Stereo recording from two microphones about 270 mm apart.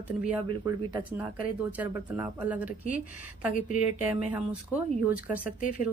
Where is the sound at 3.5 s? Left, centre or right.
Left.